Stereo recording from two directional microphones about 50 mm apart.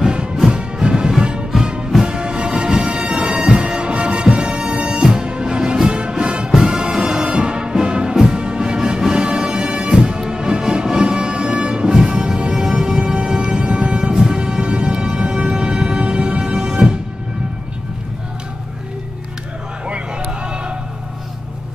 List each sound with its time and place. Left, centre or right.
0.0 s music: centre